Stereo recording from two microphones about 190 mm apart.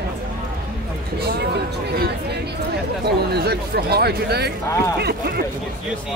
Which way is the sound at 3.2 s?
55° right (ahead or behind).